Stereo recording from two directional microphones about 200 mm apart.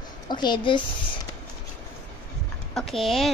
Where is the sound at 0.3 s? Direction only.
20° left (ahead or behind).